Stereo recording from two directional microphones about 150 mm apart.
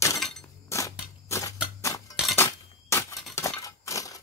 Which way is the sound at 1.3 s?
20° left (ahead or behind).